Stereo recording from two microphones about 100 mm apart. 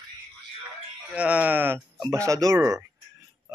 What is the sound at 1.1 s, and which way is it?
Speech, 15° right (ahead or behind).